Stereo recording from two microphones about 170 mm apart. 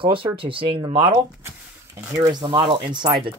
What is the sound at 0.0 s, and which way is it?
Speech, 30° right (ahead or behind).